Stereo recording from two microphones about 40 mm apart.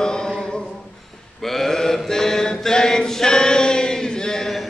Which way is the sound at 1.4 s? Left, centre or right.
Centre.